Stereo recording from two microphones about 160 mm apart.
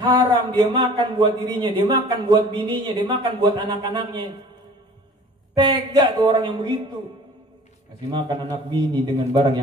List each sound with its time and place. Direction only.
0.0 s a man's voice: 30° right (ahead or behind)
5.6 s a man's voice: 30° right (ahead or behind)
8.1 s a man's voice: 25° right (ahead or behind)